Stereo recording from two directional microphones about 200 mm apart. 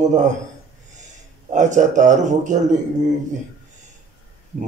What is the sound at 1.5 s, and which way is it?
A man's voice, 40° right (ahead or behind).